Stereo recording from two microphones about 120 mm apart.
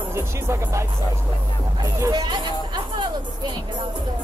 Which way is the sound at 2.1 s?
40° right (ahead or behind).